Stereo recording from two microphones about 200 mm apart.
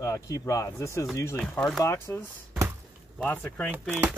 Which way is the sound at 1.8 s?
15° left (ahead or behind).